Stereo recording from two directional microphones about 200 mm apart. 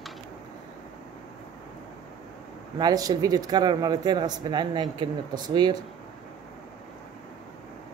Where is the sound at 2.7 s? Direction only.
20° right (ahead or behind).